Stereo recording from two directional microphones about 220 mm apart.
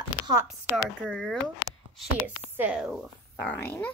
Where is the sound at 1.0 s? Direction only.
5° left (ahead or behind).